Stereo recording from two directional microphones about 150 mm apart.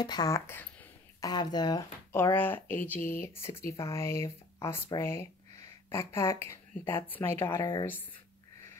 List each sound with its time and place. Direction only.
0.0 s speech: 25° left (ahead or behind)
2.3 s speech: 15° left (ahead or behind)